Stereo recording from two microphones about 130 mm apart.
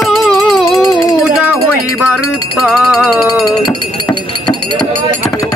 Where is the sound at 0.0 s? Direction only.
Centre (ahead or behind).